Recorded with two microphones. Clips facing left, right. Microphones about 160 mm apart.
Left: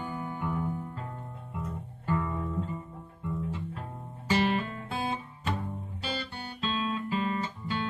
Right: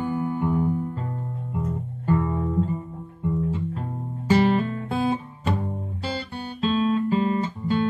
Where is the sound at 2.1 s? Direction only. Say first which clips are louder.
Right 7 dB; 45° right (ahead or behind).